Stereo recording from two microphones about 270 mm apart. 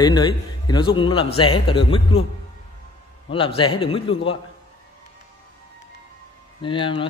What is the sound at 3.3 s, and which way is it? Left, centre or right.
A man's voice, centre.